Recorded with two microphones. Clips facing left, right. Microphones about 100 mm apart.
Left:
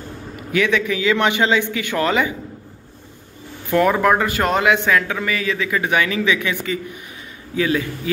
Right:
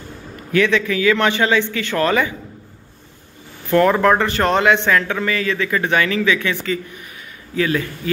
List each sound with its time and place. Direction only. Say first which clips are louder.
0.5 s speech: right 2 dB; 15° left (ahead or behind)
3.7 s speech: right 2 dB; 5° left (ahead or behind)